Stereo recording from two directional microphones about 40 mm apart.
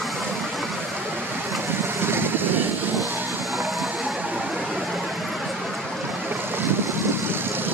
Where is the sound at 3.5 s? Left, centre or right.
Centre.